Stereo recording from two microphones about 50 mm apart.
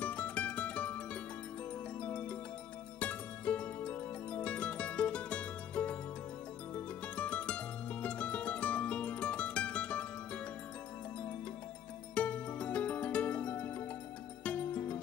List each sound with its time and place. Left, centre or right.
0.0 s music: left
12.2 s music: left